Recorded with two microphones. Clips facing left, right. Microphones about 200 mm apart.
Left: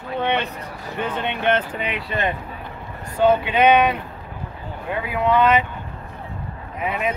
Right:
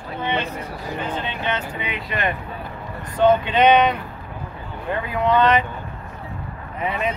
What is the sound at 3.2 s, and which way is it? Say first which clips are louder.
Speech: right 1 dB; 10° left (ahead or behind).